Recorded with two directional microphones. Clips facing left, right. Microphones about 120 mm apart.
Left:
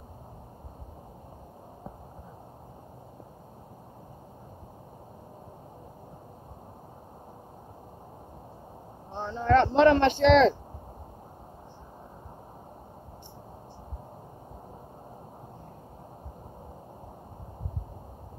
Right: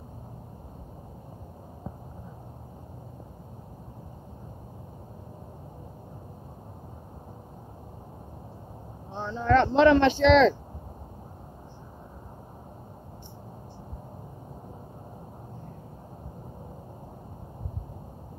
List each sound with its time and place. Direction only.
9.2 s speech: 45° left (ahead or behind)